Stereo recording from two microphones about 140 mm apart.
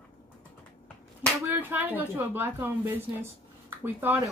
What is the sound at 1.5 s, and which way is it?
A woman's voice, 10° right (ahead or behind).